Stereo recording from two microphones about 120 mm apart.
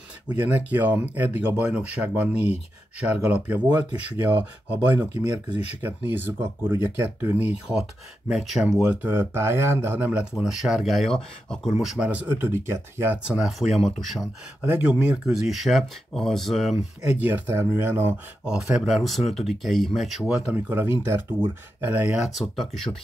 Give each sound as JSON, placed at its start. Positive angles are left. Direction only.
{"t": 0.5, "sound": "speech", "side_deg": -15}
{"t": 10.3, "sound": "speech", "side_deg": -5}
{"t": 11.8, "sound": "speech", "side_deg": -5}
{"t": 18.4, "sound": "speech", "side_deg": -5}
{"t": 20.5, "sound": "speech", "side_deg": -15}